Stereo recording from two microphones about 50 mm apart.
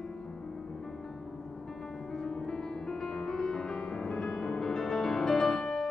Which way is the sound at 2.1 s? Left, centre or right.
Centre.